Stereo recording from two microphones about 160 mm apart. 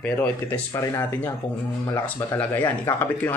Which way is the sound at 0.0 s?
10° left (ahead or behind).